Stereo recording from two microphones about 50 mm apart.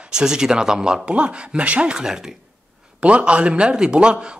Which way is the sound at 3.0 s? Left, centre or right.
Right.